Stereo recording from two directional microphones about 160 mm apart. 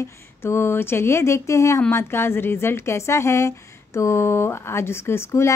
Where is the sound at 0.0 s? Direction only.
15° left (ahead or behind).